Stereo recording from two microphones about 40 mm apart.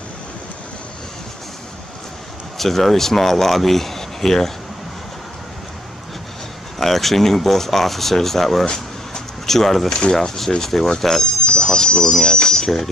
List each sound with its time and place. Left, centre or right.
2.5 s speech: centre
6.8 s speech: centre
8.6 s a sound: centre
10.1 s speech: centre
11.4 s a sound: left
11.7 s speech: centre